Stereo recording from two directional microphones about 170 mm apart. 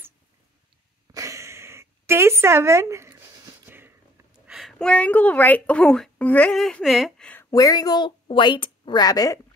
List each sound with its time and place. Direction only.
1.1 s a sound: 20° right (ahead or behind)
4.5 s a woman's voice: centre (ahead or behind)
7.5 s a woman's voice: 20° left (ahead or behind)